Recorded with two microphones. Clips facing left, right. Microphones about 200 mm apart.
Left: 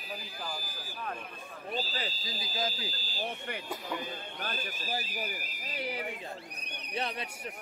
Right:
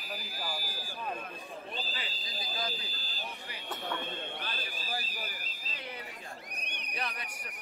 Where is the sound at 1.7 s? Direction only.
40° left (ahead or behind).